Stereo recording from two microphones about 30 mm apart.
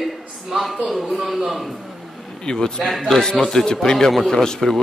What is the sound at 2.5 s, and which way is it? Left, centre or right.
Speech, left.